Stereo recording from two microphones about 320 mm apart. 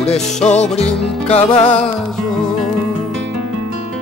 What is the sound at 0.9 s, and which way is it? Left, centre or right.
Music, centre.